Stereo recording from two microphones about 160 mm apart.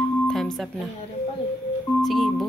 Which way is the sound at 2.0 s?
Centre (ahead or behind).